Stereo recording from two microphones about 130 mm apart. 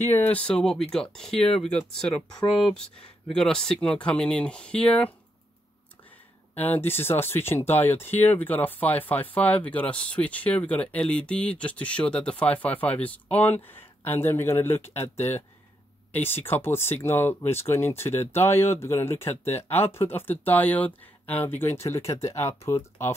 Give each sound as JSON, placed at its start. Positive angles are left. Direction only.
{"t": 0.1, "sound": "speech", "side_deg": 15}
{"t": 3.3, "sound": "speech", "side_deg": 5}
{"t": 6.5, "sound": "speech", "side_deg": 15}
{"t": 22.0, "sound": "speech", "side_deg": 55}
{"t": 22.7, "sound": "speech", "side_deg": 20}